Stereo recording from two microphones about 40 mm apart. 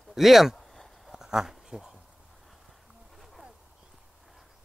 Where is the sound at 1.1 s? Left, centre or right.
Centre.